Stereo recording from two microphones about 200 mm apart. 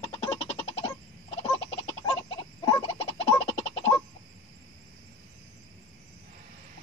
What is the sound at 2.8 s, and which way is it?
Baby laughter, 25° left (ahead or behind).